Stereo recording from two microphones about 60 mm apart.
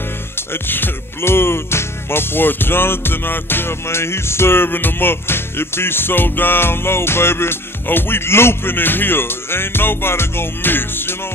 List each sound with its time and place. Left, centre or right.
0.5 s music: left